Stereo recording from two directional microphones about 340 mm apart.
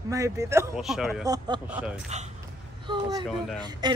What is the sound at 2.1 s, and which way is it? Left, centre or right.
Speech, centre.